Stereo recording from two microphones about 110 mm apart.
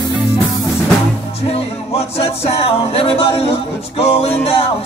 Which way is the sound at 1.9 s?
65° left (ahead or behind).